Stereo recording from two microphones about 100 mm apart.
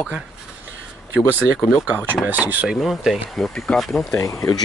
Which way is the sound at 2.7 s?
5° right (ahead or behind).